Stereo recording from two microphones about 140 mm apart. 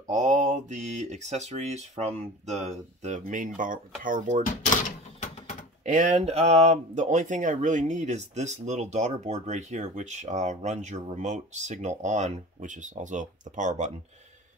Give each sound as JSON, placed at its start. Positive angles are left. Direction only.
{"t": 0.1, "sound": "speech", "side_deg": -60}
{"t": 5.9, "sound": "speech", "side_deg": -60}